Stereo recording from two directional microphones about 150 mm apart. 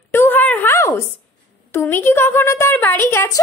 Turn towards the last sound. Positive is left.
turn(degrees=15)  # may be behind; listen again after turning